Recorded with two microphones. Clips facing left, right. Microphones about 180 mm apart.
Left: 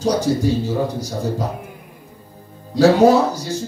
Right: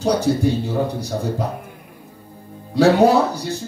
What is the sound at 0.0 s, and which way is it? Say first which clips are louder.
Speech: even; 60° right (ahead or behind).